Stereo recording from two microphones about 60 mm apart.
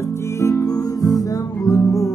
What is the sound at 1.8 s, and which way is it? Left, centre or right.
Music, left.